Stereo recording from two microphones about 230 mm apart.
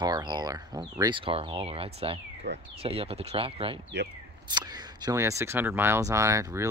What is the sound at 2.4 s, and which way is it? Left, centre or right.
Speech, right.